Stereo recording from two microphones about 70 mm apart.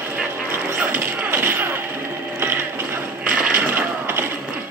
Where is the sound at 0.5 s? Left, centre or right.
Right.